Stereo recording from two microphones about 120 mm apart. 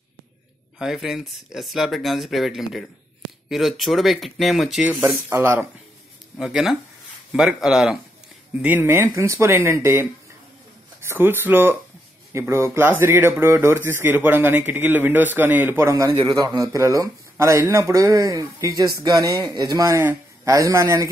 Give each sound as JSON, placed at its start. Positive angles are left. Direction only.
{"t": 0.7, "sound": "speech", "side_deg": -5}
{"t": 5.3, "sound": "speech", "side_deg": -20}
{"t": 6.3, "sound": "speech", "side_deg": -5}
{"t": 8.5, "sound": "a man's voice", "side_deg": -15}
{"t": 16.1, "sound": "a man's voice", "side_deg": -45}
{"t": 16.3, "sound": "speech", "side_deg": -30}